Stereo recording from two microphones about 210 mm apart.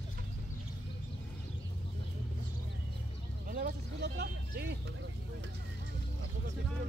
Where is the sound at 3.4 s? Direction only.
45° right (ahead or behind).